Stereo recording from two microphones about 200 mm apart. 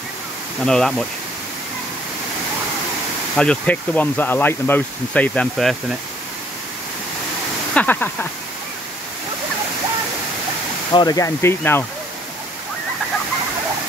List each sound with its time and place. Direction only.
0.7 s speech: 5° left (ahead or behind)
3.3 s speech: 5° left (ahead or behind)
7.7 s speech: 10° left (ahead or behind)
10.9 s speech: 20° left (ahead or behind)